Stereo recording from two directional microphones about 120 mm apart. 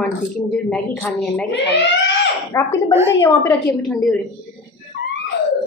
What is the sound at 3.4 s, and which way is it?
Speech, 10° left (ahead or behind).